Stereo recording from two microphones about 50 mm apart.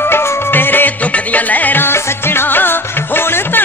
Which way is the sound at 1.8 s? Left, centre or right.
Left.